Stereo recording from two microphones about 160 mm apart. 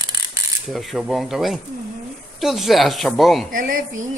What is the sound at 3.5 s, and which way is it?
Speech, 60° right (ahead or behind).